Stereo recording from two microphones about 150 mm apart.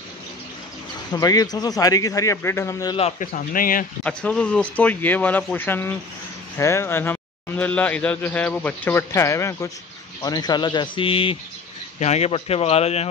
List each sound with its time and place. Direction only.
1.1 s speech: 25° left (ahead or behind)
3.0 s speech: 45° left (ahead or behind)
3.3 s speech: 70° left (ahead or behind)
4.0 s a man's voice: 5° left (ahead or behind); by 13.1 s 45° left (ahead or behind)